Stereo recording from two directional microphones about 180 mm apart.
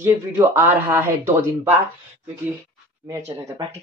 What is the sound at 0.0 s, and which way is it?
Speech, 10° right (ahead or behind).